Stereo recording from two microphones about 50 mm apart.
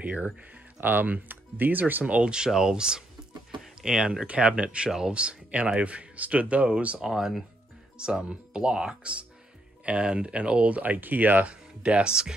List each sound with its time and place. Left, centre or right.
0.0 s speech: right
2.3 s speech: centre
4.3 s speech: right
4.6 s speech: centre
7.0 s speech: centre
8.0 s speech: centre
11.8 s speech: right